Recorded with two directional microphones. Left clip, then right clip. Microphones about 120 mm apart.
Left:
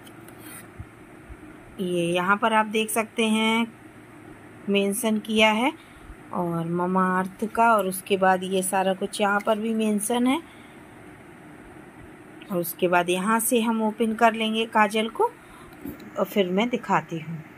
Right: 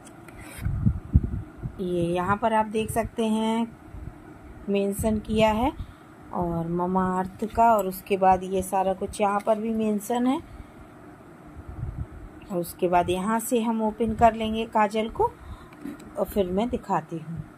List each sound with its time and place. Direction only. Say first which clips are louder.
1.8 s a woman's voice: left 2 dB; 5° right (ahead or behind)
4.6 s a woman's voice: left 2 dB; centre (ahead or behind)
6.3 s speech: left 1 dB; 30° left (ahead or behind)
7.2 s a woman's voice: even; centre (ahead or behind)
12.4 s a woman's voice: left 2 dB; centre (ahead or behind)
16.3 s speech: left 2 dB; 10° right (ahead or behind)